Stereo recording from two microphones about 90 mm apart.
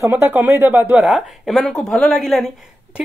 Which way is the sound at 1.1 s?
Centre (ahead or behind).